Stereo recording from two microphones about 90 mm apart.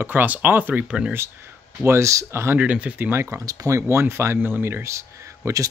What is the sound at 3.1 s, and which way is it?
Speech, 30° right (ahead or behind).